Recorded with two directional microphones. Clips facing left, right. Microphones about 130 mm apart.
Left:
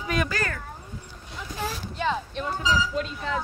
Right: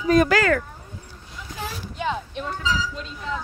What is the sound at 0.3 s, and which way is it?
Speech, 90° right.